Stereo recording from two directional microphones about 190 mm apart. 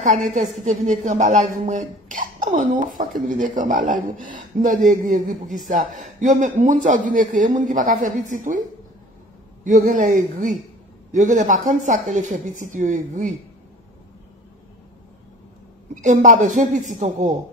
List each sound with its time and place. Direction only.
0.7 s a man's voice: 40° right (ahead or behind)
9.7 s speech: 40° right (ahead or behind)
15.9 s speech: 40° right (ahead or behind)